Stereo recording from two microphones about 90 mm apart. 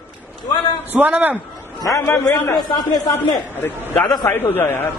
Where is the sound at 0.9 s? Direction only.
20° right (ahead or behind).